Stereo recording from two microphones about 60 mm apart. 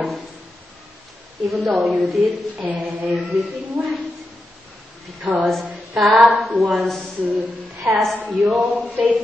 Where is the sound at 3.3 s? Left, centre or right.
Centre.